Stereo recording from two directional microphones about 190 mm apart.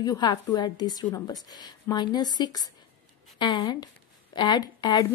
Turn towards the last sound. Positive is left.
turn(degrees=20)  # may be behind; listen again after turning